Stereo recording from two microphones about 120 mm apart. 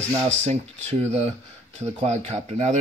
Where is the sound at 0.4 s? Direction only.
65° right (ahead or behind).